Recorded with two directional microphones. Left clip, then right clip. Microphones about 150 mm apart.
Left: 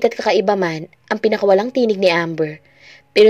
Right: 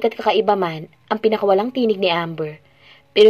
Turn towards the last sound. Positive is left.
turn(degrees=45)  # may be behind; listen again after turning